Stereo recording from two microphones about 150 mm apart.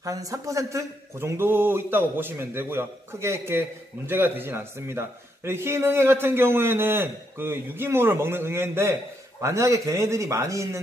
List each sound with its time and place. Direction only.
0.0 s a man's voice: 25° right (ahead or behind)